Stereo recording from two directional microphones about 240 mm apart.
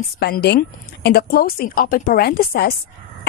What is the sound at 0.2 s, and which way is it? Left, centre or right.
Speech, left.